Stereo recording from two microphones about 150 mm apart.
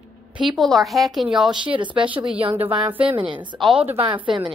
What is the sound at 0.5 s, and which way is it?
A woman's voice, centre (ahead or behind).